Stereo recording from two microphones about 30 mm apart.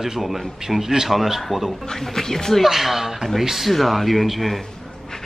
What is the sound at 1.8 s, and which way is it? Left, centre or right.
Speech, centre.